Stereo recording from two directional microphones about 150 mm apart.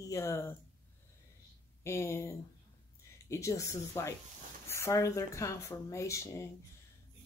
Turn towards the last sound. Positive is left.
turn(degrees=20)  # may be behind; listen again after turning